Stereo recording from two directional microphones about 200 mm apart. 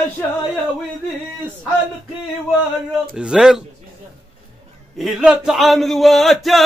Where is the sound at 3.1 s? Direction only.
5° right (ahead or behind).